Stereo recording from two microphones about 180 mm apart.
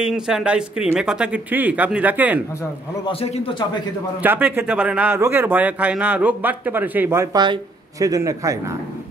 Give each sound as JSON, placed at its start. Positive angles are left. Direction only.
{"t": 0.0, "sound": "a man's voice", "side_deg": -5}
{"t": 3.1, "sound": "a man's voice", "side_deg": 30}
{"t": 4.2, "sound": "a man's voice", "side_deg": -10}